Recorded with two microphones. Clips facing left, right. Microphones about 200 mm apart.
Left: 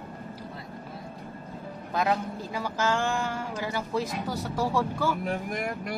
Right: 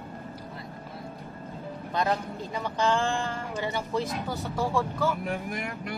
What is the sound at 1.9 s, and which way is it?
A man's voice, 5° left (ahead or behind).